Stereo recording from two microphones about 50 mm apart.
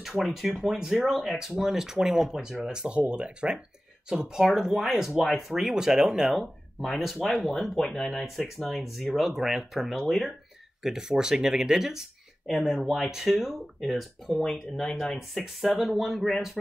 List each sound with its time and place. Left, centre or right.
0.0 s speech: centre
10.8 s speech: centre
15.1 s speech: centre